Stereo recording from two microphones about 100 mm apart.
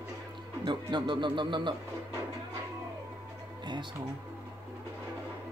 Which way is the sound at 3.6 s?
50° right (ahead or behind).